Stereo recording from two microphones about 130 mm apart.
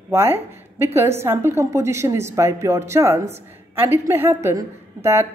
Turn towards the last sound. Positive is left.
turn(degrees=-20)  # may be behind; listen again after turning